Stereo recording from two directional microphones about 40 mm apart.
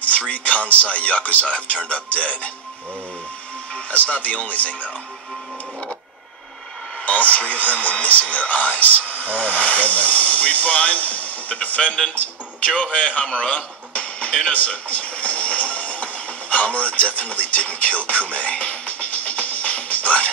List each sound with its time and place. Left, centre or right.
0.3 s speech: left
3.7 s speech: left
7.1 s speech: left
13.2 s a sound: left
14.5 s music: left